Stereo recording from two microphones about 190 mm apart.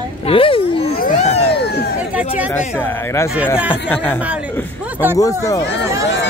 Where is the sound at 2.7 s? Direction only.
10° left (ahead or behind).